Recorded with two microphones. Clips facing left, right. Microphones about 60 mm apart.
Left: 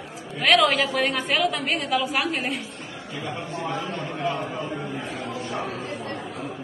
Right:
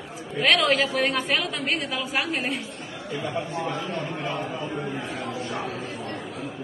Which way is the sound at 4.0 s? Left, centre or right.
Right.